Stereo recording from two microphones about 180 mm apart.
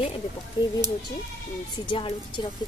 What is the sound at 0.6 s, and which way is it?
Speech, 20° left (ahead or behind).